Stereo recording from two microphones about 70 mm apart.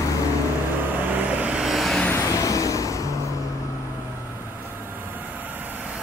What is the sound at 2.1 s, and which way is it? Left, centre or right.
Vehicle, left.